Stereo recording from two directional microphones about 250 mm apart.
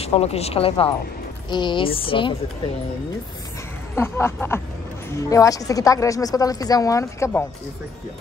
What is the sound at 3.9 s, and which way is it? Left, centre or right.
A woman's voice, centre.